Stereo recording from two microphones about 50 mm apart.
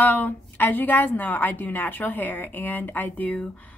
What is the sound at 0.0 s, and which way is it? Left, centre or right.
A woman's voice, left.